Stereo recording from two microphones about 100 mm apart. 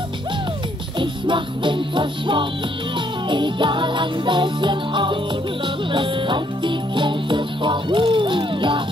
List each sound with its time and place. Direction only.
0.9 s music: 55° right (ahead or behind)